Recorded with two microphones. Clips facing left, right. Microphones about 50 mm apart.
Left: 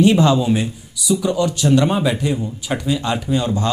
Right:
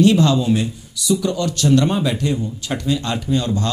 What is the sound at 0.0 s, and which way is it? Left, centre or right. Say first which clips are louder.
Speech: left 1 dB; centre.